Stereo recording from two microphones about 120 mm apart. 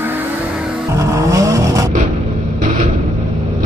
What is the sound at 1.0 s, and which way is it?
Vehicle, 25° right (ahead or behind).